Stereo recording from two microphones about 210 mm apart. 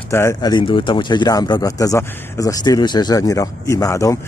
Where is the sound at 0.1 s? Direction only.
15° left (ahead or behind).